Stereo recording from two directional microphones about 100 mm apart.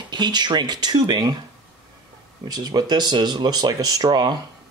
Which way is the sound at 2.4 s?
40° right (ahead or behind).